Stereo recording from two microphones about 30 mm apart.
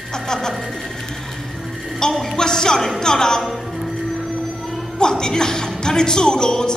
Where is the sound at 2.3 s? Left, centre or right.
Left.